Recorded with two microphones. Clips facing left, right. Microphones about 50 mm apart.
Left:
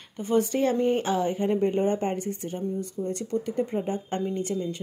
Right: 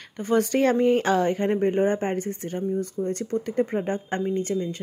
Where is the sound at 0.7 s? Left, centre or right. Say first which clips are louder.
Right 4 dB; right.